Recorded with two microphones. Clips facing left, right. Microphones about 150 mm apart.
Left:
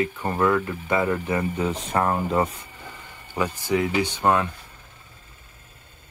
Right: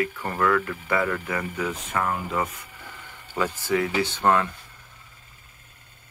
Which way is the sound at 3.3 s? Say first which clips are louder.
Left 1 dB; 15° left (ahead or behind).